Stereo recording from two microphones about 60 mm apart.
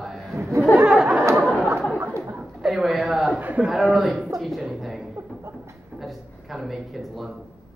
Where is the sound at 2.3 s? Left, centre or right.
Centre.